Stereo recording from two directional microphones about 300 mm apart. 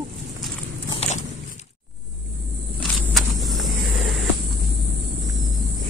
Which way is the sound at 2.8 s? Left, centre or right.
Centre.